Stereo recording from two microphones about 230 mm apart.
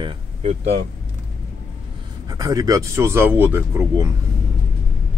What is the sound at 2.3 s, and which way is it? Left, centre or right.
Speech, centre.